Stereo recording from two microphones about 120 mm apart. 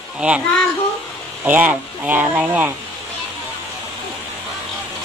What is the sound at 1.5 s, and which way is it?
Speech, 15° right (ahead or behind).